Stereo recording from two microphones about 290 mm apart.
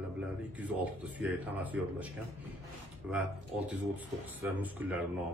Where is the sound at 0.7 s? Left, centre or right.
Centre.